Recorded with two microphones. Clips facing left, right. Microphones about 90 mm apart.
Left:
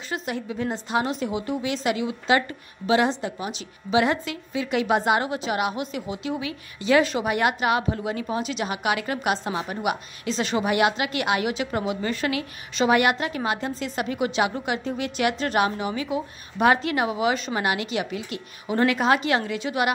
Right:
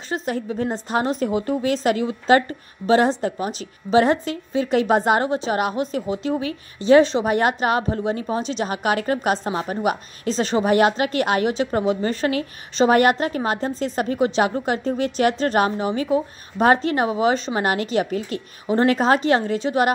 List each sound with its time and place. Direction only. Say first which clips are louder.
0.1 s a woman's voice: right 5 dB; 40° right (ahead or behind)